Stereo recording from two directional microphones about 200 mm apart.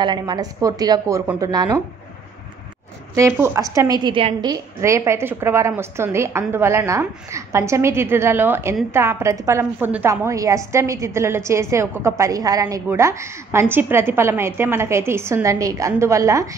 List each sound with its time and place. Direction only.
0.0 s speech: 20° right (ahead or behind)
3.2 s a woman's voice: 15° right (ahead or behind)